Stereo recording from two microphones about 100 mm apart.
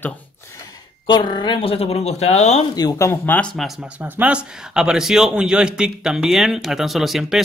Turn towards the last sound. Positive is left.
turn(degrees=-5)  # may be behind; listen again after turning